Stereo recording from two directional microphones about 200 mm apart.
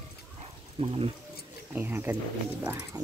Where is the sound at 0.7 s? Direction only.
30° right (ahead or behind).